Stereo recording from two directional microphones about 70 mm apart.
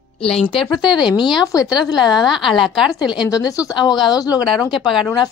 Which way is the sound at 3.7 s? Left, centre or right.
Left.